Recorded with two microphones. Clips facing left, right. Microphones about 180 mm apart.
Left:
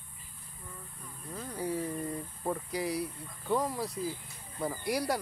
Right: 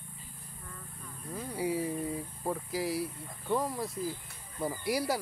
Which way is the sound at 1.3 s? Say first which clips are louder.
Right 2 dB; 10° right (ahead or behind).